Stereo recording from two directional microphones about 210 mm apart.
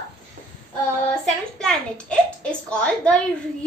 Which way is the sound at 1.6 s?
5° left (ahead or behind).